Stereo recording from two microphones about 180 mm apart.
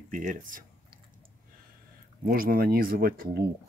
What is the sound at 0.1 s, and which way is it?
Speech, 45° right (ahead or behind).